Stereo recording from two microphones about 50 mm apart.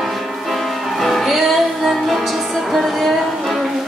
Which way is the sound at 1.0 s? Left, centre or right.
Centre.